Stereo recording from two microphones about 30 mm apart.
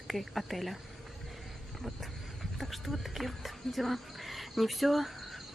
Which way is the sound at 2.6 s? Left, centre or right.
Centre.